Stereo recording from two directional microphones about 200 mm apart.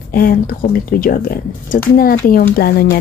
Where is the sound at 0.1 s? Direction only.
45° left (ahead or behind).